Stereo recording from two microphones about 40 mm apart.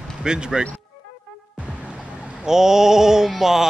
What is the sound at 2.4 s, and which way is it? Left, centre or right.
Speech, centre.